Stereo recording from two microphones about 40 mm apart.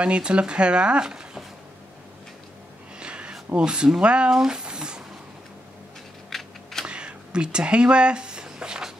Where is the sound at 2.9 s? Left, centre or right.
Right.